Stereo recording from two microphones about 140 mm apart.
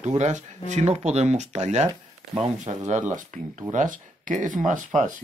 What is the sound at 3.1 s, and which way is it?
Speech, 60° right (ahead or behind).